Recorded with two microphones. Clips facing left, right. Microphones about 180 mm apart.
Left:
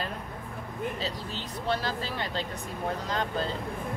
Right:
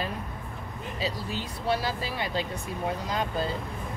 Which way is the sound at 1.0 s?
10° right (ahead or behind).